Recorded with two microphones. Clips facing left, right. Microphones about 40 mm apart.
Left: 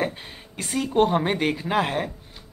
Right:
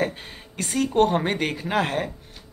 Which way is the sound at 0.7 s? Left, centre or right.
Centre.